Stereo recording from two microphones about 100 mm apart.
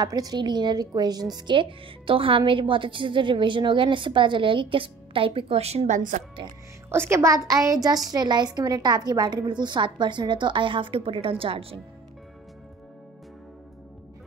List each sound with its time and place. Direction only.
0.0 s a woman's voice: 40° right (ahead or behind); by 5.9 s 90° right
6.9 s a woman's voice: 25° right (ahead or behind); by 11.8 s 65° right (ahead or behind)